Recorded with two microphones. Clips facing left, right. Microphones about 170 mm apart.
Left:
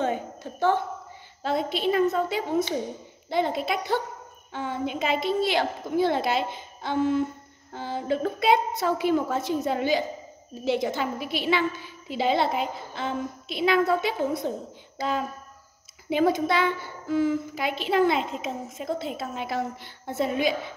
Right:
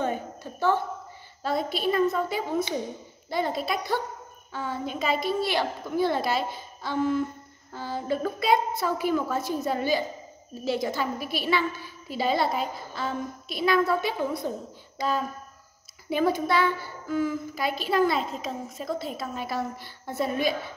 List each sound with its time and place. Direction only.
0.0 s a sound: 20° left (ahead or behind)
1.4 s a woman's voice: 20° left (ahead or behind)
16.1 s a woman's voice: 20° left (ahead or behind)